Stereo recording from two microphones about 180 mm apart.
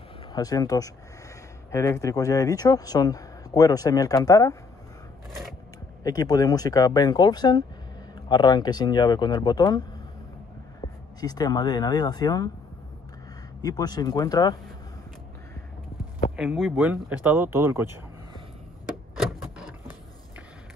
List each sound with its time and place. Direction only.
0.3 s speech: 20° left (ahead or behind)
6.0 s speech: 20° left (ahead or behind)
11.1 s speech: 20° left (ahead or behind)
13.6 s speech: 20° left (ahead or behind)
16.3 s speech: centre (ahead or behind)